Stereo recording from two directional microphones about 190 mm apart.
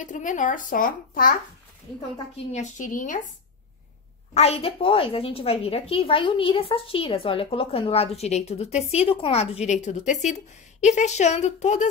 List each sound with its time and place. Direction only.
0.0 s speech: 40° left (ahead or behind)
2.5 s speech: 40° left (ahead or behind)
4.3 s a woman's voice: 30° left (ahead or behind)